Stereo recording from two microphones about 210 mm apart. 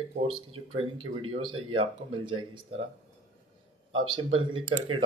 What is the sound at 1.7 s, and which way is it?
Speech, 25° right (ahead or behind).